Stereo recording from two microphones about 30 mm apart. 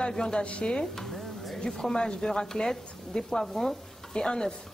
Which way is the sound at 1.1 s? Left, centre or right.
Centre.